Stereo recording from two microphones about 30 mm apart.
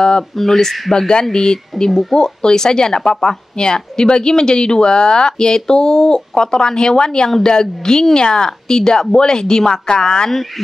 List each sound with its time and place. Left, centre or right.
0.6 s speech: centre